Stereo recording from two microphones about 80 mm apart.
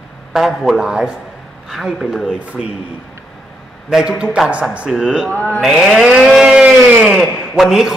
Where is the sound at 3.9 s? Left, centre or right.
Centre.